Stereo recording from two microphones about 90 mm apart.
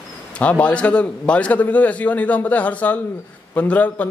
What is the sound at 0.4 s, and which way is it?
A man's voice, 15° left (ahead or behind).